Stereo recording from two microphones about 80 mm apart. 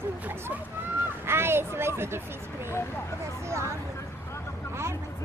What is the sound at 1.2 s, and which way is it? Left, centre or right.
Speech, right.